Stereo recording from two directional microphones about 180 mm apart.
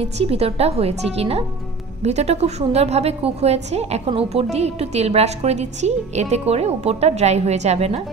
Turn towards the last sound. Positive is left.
turn(degrees=-35)  # may be behind; listen again after turning